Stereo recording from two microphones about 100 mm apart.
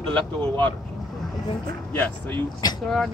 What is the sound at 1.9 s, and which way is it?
Speech, 15° left (ahead or behind).